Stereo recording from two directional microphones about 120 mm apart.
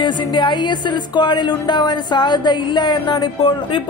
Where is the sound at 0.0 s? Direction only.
40° left (ahead or behind).